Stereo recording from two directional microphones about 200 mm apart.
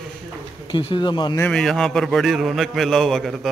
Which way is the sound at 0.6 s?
25° left (ahead or behind).